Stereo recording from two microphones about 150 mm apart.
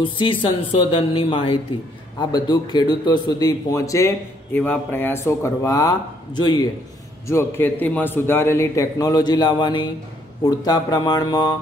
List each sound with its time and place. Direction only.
0.0 s a man's voice: 35° left (ahead or behind)
7.2 s a man's voice: 15° left (ahead or behind)